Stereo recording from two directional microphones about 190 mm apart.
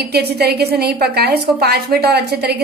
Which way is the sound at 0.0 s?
60° right (ahead or behind).